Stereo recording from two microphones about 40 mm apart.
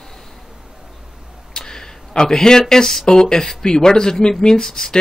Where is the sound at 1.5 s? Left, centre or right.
Centre.